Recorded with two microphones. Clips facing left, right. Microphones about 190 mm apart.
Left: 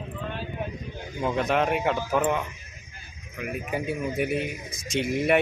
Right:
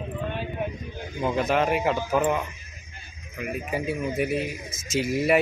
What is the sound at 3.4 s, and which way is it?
Speech, centre (ahead or behind).